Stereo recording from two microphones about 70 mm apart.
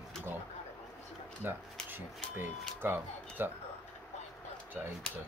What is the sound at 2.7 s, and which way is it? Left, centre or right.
Speech, right.